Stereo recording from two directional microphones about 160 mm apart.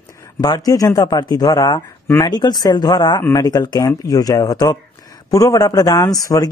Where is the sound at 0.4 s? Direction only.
25° left (ahead or behind).